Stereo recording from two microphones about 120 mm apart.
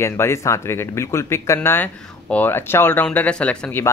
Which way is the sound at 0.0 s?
25° left (ahead or behind).